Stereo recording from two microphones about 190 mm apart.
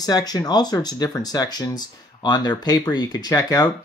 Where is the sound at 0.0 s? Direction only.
20° left (ahead or behind).